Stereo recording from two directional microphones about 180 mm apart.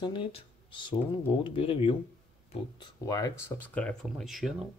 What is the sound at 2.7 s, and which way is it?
Speech, 20° left (ahead or behind).